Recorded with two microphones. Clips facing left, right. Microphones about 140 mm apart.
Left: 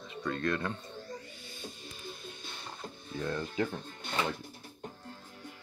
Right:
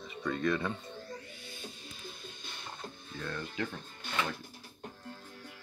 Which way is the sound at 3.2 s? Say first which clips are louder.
Left 5 dB; 30° left (ahead or behind).